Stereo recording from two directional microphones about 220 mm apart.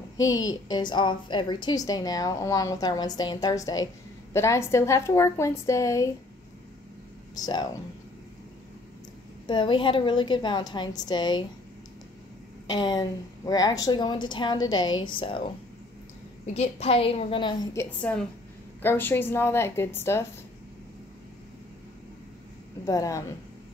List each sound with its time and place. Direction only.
0.2 s a woman's voice: 15° left (ahead or behind)
7.3 s a woman's voice: 15° left (ahead or behind)
9.5 s a woman's voice: 20° left (ahead or behind)
12.6 s a woman's voice: 20° left (ahead or behind)
16.5 s a woman's voice: 30° left (ahead or behind)
17.8 s a woman's voice: 5° left (ahead or behind)
22.8 s a woman's voice: 15° left (ahead or behind)